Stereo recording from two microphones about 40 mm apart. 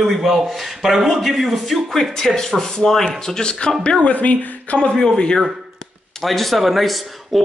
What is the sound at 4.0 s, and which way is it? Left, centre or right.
Speech, left.